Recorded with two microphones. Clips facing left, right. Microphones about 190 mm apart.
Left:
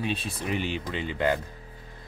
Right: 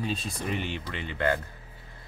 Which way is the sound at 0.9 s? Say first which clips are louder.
Left 1 dB; 15° left (ahead or behind).